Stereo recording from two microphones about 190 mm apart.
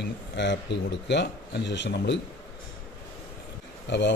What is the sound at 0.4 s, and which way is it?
Speech, 65° left (ahead or behind).